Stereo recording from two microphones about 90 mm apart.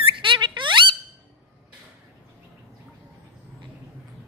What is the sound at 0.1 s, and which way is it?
Squeak, 65° right (ahead or behind).